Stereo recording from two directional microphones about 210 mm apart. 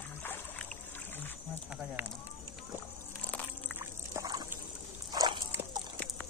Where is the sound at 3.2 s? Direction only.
5° left (ahead or behind).